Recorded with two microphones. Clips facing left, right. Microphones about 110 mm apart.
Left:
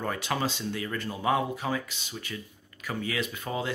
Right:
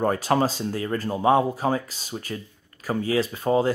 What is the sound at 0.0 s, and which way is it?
Speech, 40° right (ahead or behind).